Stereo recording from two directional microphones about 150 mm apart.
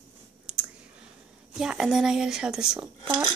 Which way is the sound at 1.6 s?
5° right (ahead or behind).